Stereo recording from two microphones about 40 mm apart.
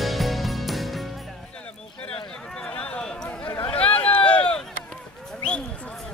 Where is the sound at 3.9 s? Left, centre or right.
Left.